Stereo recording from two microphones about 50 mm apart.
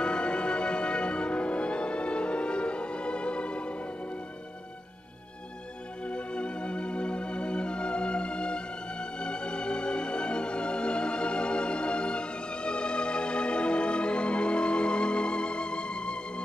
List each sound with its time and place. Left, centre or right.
0.0 s music: left
6.0 s music: left